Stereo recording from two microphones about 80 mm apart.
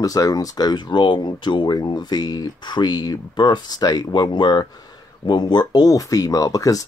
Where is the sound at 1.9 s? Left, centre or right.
Left.